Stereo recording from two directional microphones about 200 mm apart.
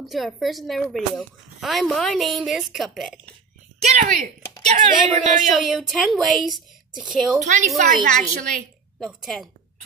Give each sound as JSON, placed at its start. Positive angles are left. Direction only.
{"t": 0.1, "sound": "a woman's voice", "side_deg": 0}
{"t": 3.8, "sound": "speech", "side_deg": -35}
{"t": 5.5, "sound": "a woman's voice", "side_deg": 0}
{"t": 7.4, "sound": "speech", "side_deg": -40}
{"t": 9.0, "sound": "a woman's voice", "side_deg": 0}